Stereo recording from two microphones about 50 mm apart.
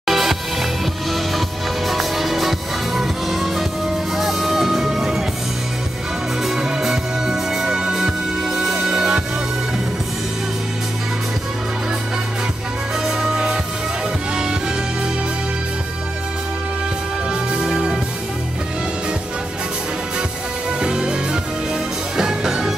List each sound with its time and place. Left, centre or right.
0.0 s music: centre
1.9 s music: centre
6.4 s music: centre
13.0 s music: centre
17.3 s music: centre
20.8 s music: centre